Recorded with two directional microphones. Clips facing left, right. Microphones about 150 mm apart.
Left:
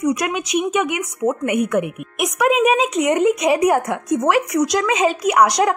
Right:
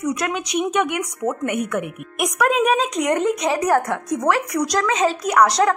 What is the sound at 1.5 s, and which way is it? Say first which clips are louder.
Speech: left 5 dB; 15° left (ahead or behind).